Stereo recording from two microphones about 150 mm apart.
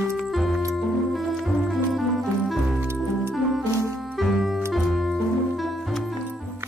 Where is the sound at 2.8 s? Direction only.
15° right (ahead or behind).